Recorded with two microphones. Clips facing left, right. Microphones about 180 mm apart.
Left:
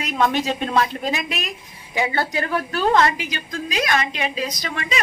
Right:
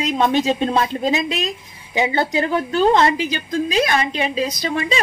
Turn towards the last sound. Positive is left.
turn(degrees=-30)  # may be behind; listen again after turning